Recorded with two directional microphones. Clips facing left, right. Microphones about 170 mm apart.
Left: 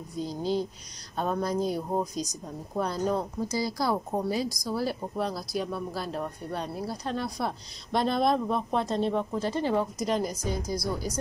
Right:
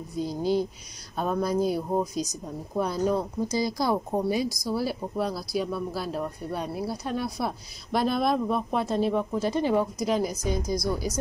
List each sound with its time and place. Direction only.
0.2 s a woman's voice: 10° right (ahead or behind)
3.4 s a woman's voice: 20° right (ahead or behind)